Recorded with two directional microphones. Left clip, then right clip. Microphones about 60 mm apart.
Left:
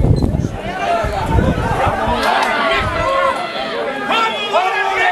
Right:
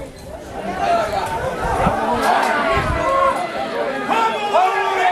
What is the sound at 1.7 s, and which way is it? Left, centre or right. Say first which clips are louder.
Chatter: left 1 dB; centre.